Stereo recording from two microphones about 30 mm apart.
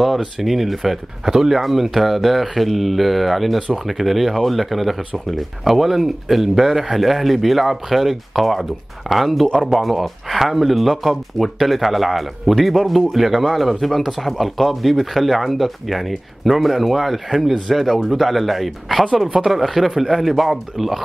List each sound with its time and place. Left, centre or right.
0.2 s speech: centre
1.2 s speech: centre
1.5 s speech: centre